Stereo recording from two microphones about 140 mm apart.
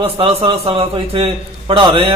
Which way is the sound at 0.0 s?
45° right (ahead or behind).